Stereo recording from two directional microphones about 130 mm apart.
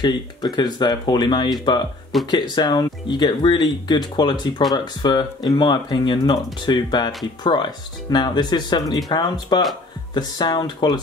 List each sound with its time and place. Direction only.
0.0 s speech: 35° left (ahead or behind)
2.1 s speech: centre (ahead or behind)
2.5 s speech: 35° left (ahead or behind)